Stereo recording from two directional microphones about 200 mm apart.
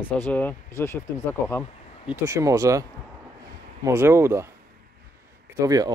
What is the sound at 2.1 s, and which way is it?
Speech, 15° right (ahead or behind).